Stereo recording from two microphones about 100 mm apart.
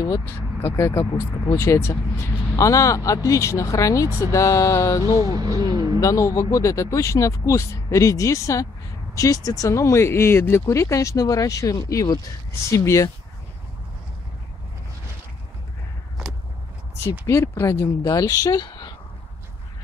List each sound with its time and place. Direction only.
0.6 s speech: 25° left (ahead or behind)
5.3 s a sound: 40° right (ahead or behind)
5.9 s speech: 30° left (ahead or behind)
17.3 s speech: 25° left (ahead or behind)
18.0 s speech: 35° left (ahead or behind)
18.7 s a sound: 45° left (ahead or behind)